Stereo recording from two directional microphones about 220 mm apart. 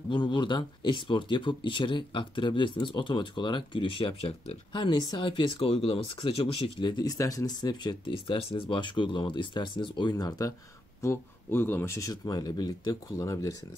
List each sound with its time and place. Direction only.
0.1 s speech: 20° left (ahead or behind)